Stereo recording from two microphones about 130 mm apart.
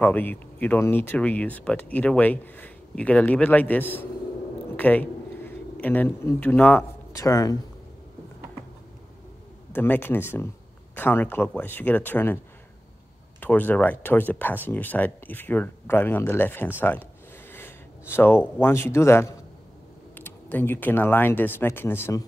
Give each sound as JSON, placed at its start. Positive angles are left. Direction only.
{"t": 0.0, "sound": "speech", "side_deg": 15}
{"t": 4.7, "sound": "a sound", "side_deg": 15}
{"t": 7.2, "sound": "speech", "side_deg": 25}
{"t": 9.7, "sound": "speech", "side_deg": 15}
{"t": 13.4, "sound": "speech", "side_deg": 15}